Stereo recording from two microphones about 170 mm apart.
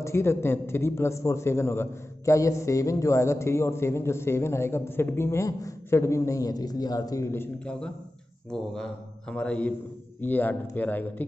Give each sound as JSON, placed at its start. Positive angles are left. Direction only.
{"t": 0.0, "sound": "a man's voice", "side_deg": 15}